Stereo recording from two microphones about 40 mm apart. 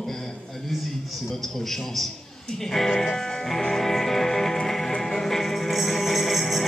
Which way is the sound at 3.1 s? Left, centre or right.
Centre.